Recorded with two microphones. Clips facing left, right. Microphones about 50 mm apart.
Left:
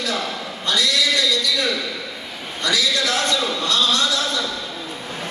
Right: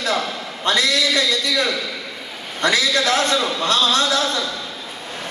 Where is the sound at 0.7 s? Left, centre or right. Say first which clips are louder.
Right 2 dB; right.